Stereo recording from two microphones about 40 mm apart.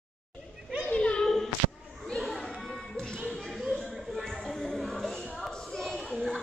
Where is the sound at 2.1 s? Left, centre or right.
Centre.